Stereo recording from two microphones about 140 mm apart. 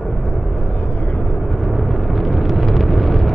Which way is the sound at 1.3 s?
Centre (ahead or behind).